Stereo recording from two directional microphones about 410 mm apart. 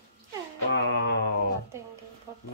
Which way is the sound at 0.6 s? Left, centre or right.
Left.